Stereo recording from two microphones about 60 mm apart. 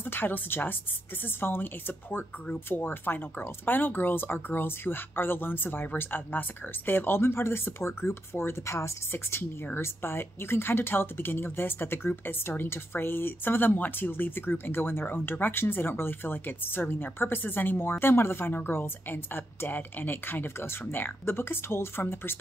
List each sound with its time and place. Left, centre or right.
0.0 s speech: left